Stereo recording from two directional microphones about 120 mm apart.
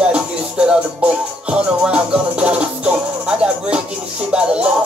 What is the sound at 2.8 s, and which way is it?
Music, 10° right (ahead or behind).